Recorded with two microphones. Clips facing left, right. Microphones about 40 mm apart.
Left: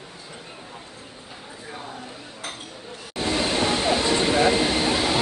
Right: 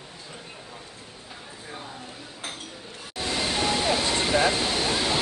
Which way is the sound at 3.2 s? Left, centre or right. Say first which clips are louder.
Left 4 dB; left.